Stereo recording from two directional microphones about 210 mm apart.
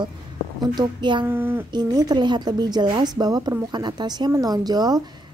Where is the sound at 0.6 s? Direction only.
20° right (ahead or behind).